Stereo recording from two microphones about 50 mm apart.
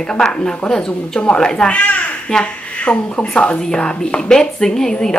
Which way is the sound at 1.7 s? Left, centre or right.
Left.